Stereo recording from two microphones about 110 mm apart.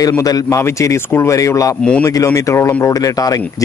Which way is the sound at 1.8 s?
10° left (ahead or behind).